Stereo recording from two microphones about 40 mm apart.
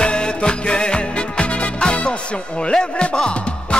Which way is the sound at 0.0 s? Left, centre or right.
Left.